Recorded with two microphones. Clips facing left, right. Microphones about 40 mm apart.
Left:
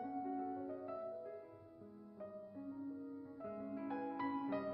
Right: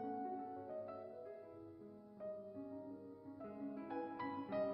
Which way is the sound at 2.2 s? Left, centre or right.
Centre.